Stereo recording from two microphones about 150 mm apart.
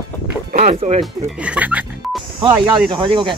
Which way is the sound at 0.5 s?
50° right (ahead or behind).